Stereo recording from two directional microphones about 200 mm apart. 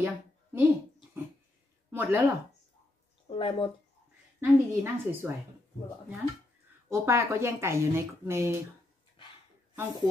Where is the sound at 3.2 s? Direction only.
25° left (ahead or behind).